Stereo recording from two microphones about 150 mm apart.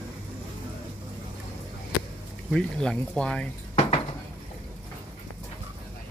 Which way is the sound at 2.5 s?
5° left (ahead or behind).